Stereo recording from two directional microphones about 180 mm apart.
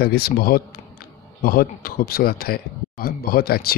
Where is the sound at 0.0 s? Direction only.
60° left (ahead or behind).